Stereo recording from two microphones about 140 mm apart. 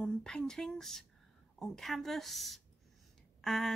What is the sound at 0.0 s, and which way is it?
Speech, 5° left (ahead or behind).